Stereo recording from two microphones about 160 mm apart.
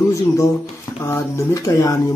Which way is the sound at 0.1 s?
20° left (ahead or behind).